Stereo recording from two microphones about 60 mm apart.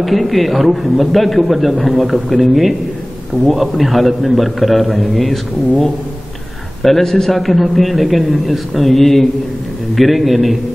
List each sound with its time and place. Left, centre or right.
0.0 s a man's voice: centre
6.8 s a man's voice: centre